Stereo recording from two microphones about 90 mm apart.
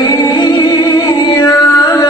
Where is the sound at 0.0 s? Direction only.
45° left (ahead or behind).